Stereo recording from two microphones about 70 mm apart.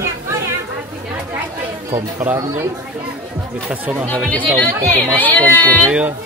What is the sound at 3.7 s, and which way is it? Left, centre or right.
Speech, right.